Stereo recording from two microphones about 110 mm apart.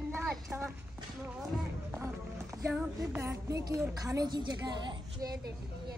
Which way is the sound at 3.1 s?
25° right (ahead or behind).